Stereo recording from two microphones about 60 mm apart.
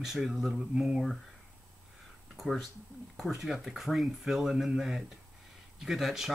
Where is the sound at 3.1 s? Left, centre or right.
Centre.